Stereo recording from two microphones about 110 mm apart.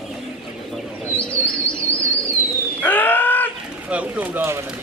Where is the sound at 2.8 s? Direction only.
15° left (ahead or behind).